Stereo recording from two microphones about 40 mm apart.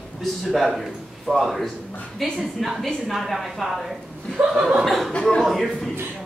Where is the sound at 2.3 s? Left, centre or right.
Centre.